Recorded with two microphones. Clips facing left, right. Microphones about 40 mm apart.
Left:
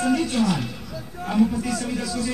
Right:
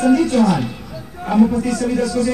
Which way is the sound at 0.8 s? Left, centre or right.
Right.